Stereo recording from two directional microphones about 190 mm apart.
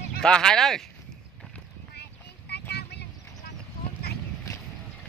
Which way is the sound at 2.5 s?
60° left (ahead or behind).